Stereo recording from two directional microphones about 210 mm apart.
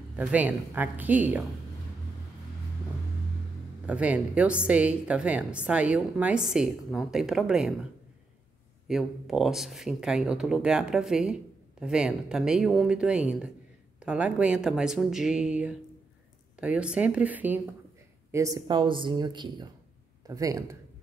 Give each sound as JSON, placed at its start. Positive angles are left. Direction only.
{"t": 0.1, "sound": "a woman's voice", "side_deg": -5}
{"t": 3.8, "sound": "a woman's voice", "side_deg": -5}
{"t": 8.8, "sound": "a woman's voice", "side_deg": 0}